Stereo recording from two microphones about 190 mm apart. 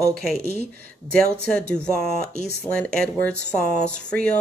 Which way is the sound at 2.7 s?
5° left (ahead or behind).